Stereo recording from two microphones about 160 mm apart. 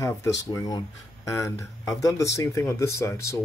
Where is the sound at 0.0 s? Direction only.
20° left (ahead or behind).